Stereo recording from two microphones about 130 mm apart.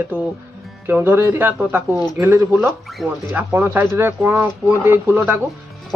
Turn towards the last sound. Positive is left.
turn(degrees=-15)  # may be behind; listen again after turning